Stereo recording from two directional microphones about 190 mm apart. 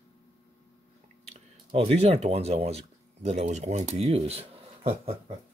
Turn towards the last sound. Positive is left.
turn(degrees=-30)  # may be behind; listen again after turning